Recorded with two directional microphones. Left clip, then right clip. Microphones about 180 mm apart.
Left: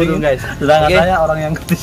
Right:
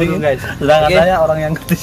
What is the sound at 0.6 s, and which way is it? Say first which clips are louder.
Speech: right 1 dB; 10° right (ahead or behind).